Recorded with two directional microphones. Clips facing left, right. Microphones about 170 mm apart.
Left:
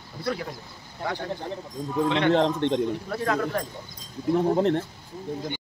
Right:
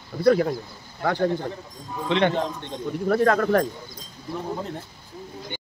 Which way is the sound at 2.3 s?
90° left.